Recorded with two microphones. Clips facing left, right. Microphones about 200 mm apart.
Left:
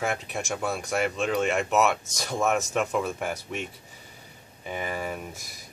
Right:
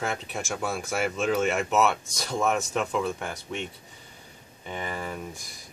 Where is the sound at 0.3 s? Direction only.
Centre (ahead or behind).